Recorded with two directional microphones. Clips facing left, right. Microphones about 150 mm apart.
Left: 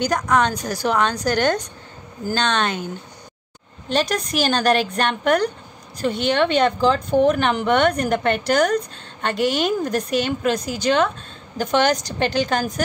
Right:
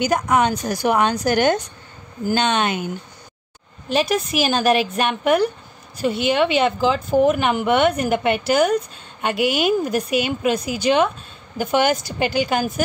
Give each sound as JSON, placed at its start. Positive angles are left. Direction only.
{"t": 0.0, "sound": "a woman's voice", "side_deg": -10}
{"t": 3.9, "sound": "a woman's voice", "side_deg": -5}